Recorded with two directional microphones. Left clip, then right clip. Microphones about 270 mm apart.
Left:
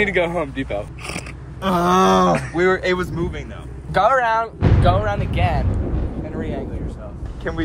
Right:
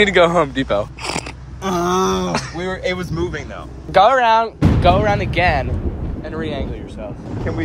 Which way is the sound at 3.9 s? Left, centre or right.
Right.